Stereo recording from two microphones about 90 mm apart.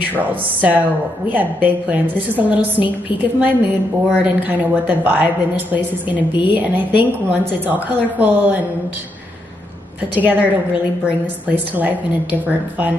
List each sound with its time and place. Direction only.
0.2 s a woman's voice: 20° right (ahead or behind)
10.1 s a woman's voice: 20° right (ahead or behind)